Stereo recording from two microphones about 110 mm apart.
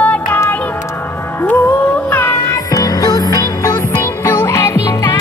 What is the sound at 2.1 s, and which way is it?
Music, 20° left (ahead or behind).